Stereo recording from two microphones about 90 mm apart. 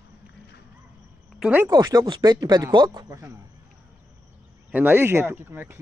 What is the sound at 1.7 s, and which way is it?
Speech, 50° right (ahead or behind).